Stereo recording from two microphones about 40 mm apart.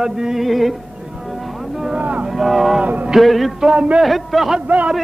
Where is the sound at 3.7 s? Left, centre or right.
Right.